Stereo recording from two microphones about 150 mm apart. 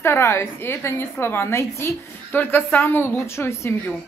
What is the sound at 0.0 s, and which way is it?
Speech, 15° left (ahead or behind).